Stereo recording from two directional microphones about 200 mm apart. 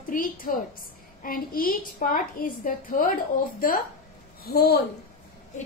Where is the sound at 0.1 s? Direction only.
45° left (ahead or behind).